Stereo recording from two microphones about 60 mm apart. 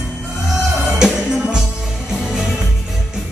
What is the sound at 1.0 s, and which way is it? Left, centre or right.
Music, centre.